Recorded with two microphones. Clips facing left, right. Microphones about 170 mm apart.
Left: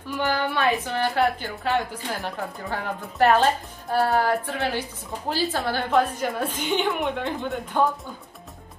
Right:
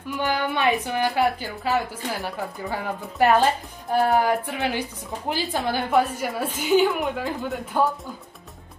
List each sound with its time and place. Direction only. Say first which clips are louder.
0.2 s a woman's voice: even; 15° right (ahead or behind); by 7.9 s centre (ahead or behind)